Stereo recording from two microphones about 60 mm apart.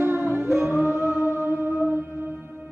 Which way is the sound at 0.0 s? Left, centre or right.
Right.